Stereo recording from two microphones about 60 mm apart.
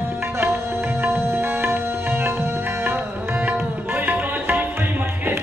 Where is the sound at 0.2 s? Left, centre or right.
Right.